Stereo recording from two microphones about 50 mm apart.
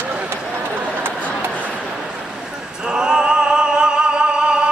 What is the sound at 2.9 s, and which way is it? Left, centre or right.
Music, centre.